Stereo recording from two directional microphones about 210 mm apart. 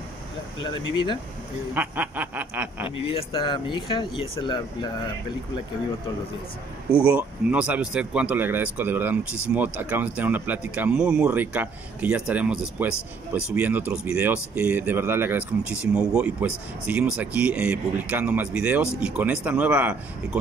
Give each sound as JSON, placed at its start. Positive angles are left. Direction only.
{"t": 1.7, "sound": "speech", "side_deg": -10}
{"t": 3.1, "sound": "speech", "side_deg": 25}
{"t": 6.9, "sound": "speech", "side_deg": -5}